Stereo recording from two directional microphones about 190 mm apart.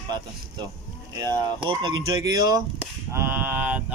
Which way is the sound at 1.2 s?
25° right (ahead or behind).